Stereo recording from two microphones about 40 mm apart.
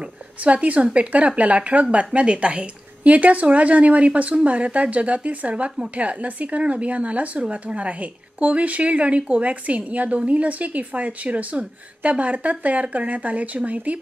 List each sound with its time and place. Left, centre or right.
0.4 s speech: right